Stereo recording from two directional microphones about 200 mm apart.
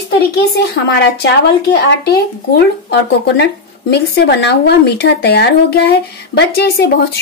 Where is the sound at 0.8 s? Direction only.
60° left (ahead or behind).